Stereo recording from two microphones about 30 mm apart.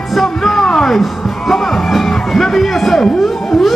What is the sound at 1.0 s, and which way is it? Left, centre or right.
Music, centre.